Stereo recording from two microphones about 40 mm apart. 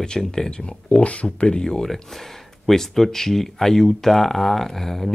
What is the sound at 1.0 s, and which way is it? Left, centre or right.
Speech, left.